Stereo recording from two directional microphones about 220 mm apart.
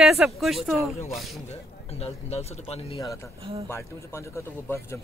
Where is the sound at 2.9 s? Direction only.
15° left (ahead or behind).